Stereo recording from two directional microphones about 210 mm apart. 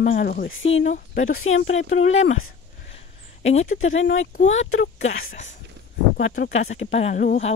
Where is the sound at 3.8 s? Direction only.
65° left (ahead or behind).